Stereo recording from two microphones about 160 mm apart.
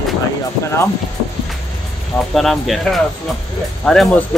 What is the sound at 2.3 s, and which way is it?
Speech, centre (ahead or behind).